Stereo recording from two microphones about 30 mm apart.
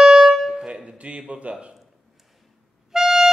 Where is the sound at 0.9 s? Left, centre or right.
Right.